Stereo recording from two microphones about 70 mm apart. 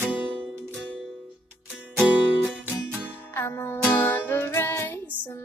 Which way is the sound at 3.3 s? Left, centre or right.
Left.